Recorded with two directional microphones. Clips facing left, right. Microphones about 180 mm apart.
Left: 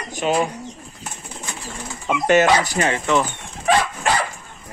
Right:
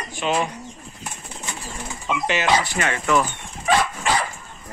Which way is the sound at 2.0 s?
45° left (ahead or behind).